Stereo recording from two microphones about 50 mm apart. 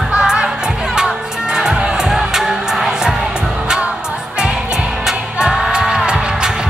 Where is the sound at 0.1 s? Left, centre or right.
Centre.